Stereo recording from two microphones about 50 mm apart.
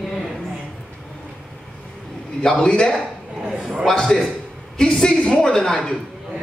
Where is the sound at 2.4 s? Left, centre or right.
Centre.